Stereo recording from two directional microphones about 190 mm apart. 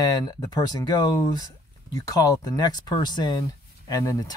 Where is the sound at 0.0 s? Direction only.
20° left (ahead or behind).